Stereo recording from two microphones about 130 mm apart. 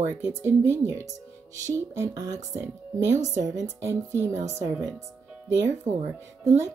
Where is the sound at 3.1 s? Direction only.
60° right (ahead or behind).